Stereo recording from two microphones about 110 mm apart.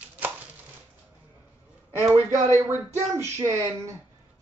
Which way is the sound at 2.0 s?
25° right (ahead or behind).